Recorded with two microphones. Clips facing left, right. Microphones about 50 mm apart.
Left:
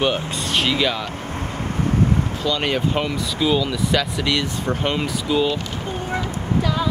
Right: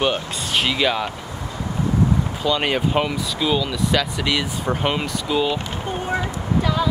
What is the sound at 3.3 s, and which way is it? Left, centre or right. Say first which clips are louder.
Speech: left 2 dB; centre.